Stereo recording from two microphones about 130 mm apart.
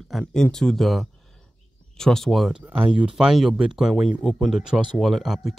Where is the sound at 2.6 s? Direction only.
10° right (ahead or behind).